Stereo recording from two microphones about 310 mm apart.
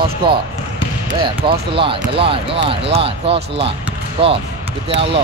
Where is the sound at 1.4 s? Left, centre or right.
Centre.